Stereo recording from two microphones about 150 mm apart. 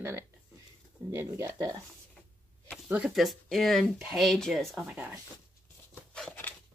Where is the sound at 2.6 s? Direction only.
5° right (ahead or behind).